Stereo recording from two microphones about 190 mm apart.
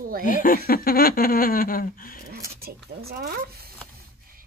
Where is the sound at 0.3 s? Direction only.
45° left (ahead or behind).